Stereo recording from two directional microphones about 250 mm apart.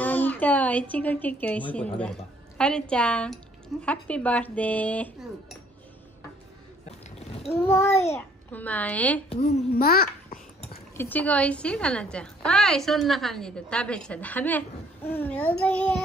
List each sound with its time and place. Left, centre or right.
0.0 s a woman's voice: centre
7.5 s a child's voice: centre
9.8 s a child's voice: left
11.0 s a woman's voice: centre